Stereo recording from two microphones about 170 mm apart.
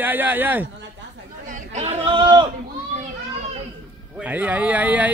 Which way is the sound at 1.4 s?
40° right (ahead or behind).